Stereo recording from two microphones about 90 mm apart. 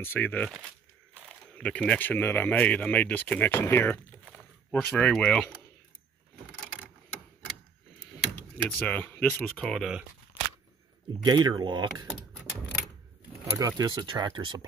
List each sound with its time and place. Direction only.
0.0 s speech: 20° left (ahead or behind)
4.2 s a sound: 5° left (ahead or behind)
4.9 s speech: 10° left (ahead or behind)
8.7 s speech: 15° left (ahead or behind)
9.6 s speech: 10° left (ahead or behind)
11.2 s speech: 55° right (ahead or behind)
13.5 s speech: 40° right (ahead or behind)
13.8 s speech: 55° right (ahead or behind)